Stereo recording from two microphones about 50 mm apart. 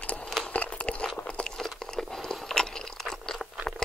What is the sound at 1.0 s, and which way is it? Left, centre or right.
Crunch, centre.